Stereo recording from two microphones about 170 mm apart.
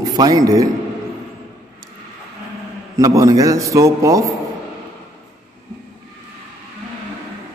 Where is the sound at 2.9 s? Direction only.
20° right (ahead or behind).